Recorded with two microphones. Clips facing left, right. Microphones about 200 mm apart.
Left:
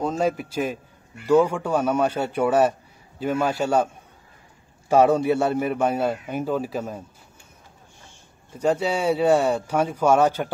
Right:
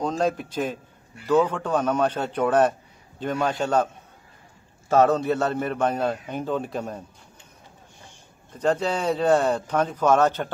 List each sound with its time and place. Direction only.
0.0 s a man's voice: 5° left (ahead or behind)
8.5 s a man's voice: 10° left (ahead or behind)